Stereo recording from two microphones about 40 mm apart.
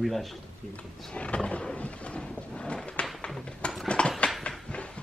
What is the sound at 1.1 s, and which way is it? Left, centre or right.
Wild animals, left.